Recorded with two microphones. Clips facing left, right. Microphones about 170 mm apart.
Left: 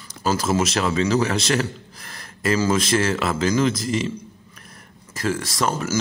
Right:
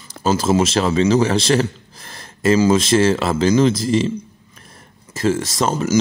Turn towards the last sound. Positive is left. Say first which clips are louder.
# right 4 dB
turn(degrees=-20)  # may be behind; listen again after turning